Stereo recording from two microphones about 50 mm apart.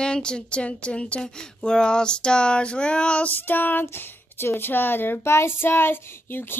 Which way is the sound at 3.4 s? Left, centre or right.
Left.